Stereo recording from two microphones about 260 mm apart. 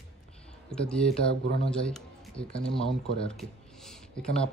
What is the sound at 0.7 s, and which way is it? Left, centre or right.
Speech, centre.